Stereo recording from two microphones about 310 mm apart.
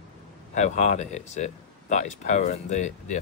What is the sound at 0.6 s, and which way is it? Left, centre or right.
Speech, left.